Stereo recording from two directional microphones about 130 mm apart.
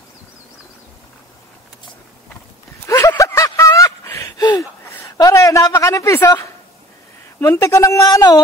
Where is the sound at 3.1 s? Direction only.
25° left (ahead or behind).